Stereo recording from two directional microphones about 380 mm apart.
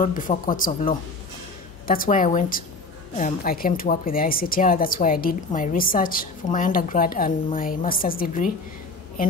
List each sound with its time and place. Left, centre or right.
0.0 s a woman's voice: left